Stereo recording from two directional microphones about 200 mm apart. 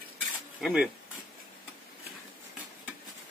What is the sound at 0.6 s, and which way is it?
Cutlery, centre (ahead or behind).